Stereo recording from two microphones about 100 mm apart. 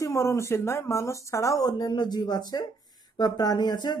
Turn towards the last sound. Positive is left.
turn(degrees=45)  # may be behind; listen again after turning